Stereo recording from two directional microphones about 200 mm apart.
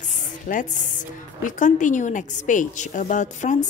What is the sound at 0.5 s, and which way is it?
A woman's voice, 40° left (ahead or behind).